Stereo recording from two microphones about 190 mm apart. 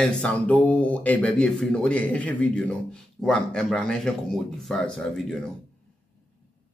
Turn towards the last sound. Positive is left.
turn(degrees=5)  # may be behind; listen again after turning